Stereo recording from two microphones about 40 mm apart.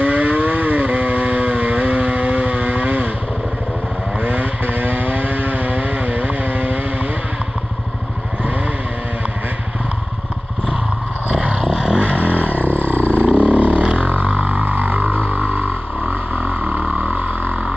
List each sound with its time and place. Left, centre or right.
0.0 s vehicle: right
4.2 s vehicle: right
4.6 s vehicle: right
11.3 s a sound: right
12.0 s vehicle: right
12.4 s roar: left
13.5 s vehicle: right
13.9 s a sound: right
14.4 s vehicle: right
16.0 s vehicle: right